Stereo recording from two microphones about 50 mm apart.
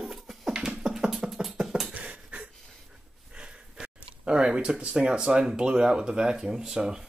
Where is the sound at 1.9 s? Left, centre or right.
Right.